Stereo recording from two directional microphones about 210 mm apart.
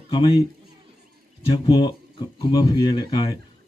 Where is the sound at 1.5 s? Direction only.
20° left (ahead or behind).